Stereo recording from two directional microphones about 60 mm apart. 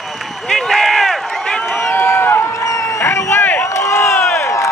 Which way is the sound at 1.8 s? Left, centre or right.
Left.